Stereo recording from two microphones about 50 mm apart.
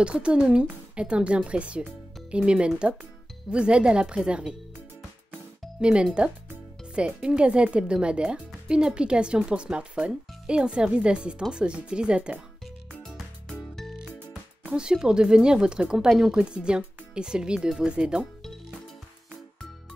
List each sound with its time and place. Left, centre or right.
0.0 s speech: right
5.8 s speech: centre
13.0 s music: centre
14.8 s speech: centre